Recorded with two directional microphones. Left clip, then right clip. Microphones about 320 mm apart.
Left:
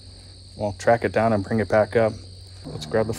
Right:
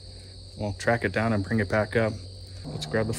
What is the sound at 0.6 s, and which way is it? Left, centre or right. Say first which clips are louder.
Speech: left 6 dB; centre.